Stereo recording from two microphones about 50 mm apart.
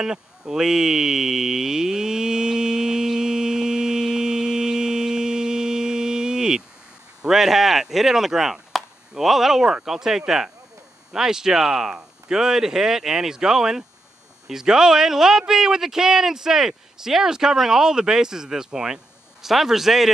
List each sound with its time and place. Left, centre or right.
0.0 s a sound: centre
7.2 s chop: centre
9.8 s speech: centre